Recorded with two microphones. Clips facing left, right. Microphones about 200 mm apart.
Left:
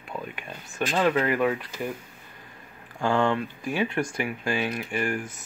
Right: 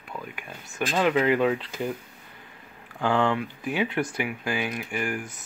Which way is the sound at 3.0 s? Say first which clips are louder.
Even; 15° right (ahead or behind).